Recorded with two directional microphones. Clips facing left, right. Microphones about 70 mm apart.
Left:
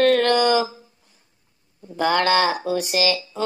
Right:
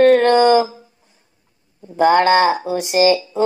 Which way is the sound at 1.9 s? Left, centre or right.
Right.